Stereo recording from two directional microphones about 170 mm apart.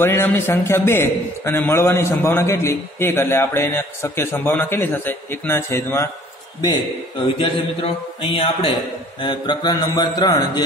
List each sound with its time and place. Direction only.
0.0 s a man's voice: 15° left (ahead or behind)
7.3 s a man's voice: 30° left (ahead or behind)